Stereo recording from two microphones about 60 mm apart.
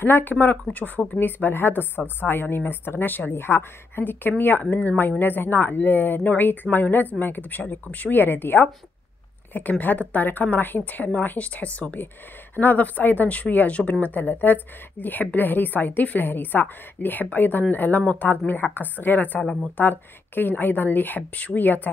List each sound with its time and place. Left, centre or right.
0.0 s a woman's voice: left